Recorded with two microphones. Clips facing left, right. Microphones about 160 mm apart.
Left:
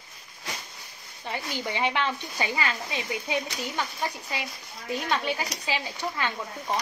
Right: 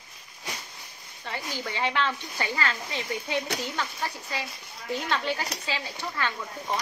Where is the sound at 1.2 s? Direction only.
15° left (ahead or behind).